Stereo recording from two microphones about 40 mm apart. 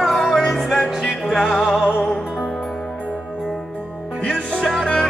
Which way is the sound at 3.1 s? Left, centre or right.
Right.